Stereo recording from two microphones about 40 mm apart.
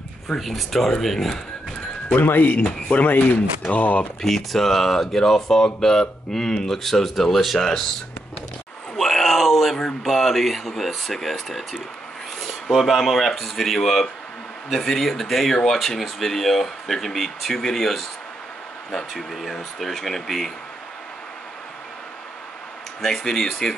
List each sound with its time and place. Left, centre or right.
0.4 s speech: centre
2.1 s speech: left
4.2 s speech: centre
8.9 s groan: centre
10.0 s speech: centre
23.0 s speech: centre